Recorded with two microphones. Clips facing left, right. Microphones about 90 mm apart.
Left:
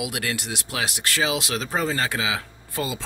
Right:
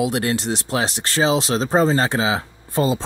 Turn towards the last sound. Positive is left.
turn(degrees=-30)  # may be behind; listen again after turning